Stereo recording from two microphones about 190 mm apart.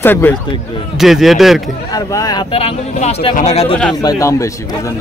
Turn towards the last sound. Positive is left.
turn(degrees=15)  # may be behind; listen again after turning